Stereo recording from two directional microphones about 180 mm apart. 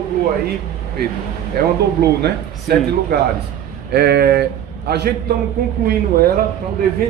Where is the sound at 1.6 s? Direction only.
60° right (ahead or behind).